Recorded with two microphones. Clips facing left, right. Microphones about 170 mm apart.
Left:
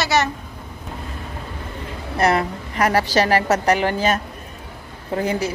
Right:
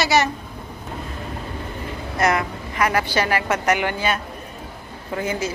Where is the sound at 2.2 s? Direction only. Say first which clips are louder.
Left 2 dB; 30° left (ahead or behind).